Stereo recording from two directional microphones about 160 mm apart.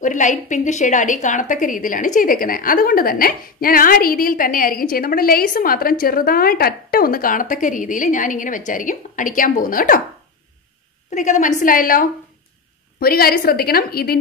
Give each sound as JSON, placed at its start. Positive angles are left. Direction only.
{"t": 0.0, "sound": "a woman's voice", "side_deg": 50}
{"t": 11.1, "sound": "a woman's voice", "side_deg": 50}
{"t": 13.0, "sound": "a woman's voice", "side_deg": 70}